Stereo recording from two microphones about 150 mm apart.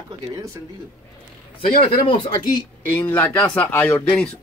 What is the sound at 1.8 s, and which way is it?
Speech, 40° left (ahead or behind).